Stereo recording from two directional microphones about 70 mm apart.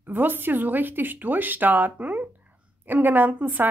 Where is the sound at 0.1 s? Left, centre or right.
Right.